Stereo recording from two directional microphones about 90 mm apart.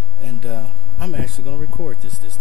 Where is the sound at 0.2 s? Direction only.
5° left (ahead or behind).